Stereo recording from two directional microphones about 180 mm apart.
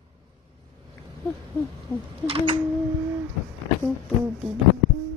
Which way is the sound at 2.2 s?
30° right (ahead or behind).